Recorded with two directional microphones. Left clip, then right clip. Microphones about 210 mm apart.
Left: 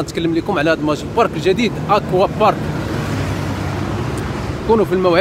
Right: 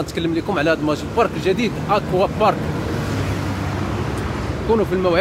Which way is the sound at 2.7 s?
30° left (ahead or behind).